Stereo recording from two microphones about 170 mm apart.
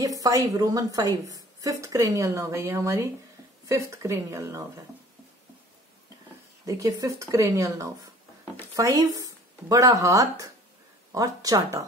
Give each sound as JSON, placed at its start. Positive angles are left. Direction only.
{"t": 0.0, "sound": "a woman's voice", "side_deg": -20}
{"t": 6.6, "sound": "a woman's voice", "side_deg": -20}